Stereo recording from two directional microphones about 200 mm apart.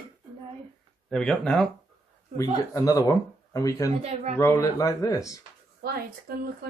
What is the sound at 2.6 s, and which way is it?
Speech, 20° left (ahead or behind).